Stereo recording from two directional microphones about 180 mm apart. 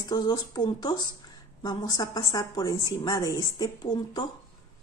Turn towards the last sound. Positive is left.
turn(degrees=25)  # may be behind; listen again after turning